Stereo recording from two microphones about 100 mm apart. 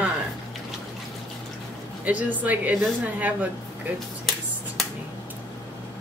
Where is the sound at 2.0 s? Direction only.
15° right (ahead or behind).